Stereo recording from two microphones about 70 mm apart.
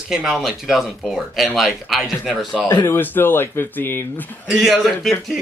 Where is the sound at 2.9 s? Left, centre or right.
Left.